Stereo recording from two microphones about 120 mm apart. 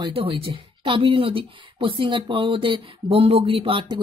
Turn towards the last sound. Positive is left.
turn(degrees=-45)  # may be behind; listen again after turning